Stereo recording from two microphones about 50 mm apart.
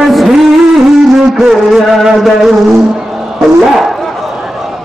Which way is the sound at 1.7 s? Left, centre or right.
Centre.